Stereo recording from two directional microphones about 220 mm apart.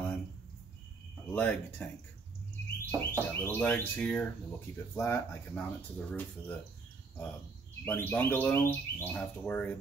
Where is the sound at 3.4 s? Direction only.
10° left (ahead or behind).